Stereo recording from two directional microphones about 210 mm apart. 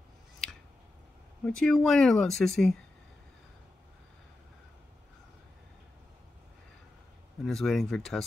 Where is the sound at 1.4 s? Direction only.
5° left (ahead or behind).